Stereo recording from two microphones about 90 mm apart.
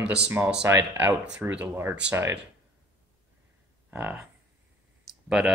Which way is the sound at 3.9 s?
15° right (ahead or behind).